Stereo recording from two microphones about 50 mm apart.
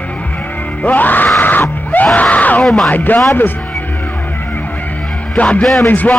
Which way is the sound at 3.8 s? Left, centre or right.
Left.